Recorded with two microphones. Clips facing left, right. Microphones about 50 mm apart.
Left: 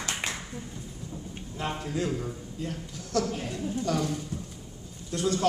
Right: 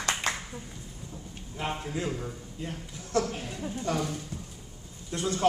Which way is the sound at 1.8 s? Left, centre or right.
Right.